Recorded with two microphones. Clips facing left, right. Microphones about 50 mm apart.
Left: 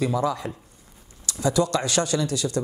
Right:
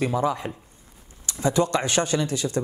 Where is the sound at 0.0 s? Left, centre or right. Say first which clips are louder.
Even; right.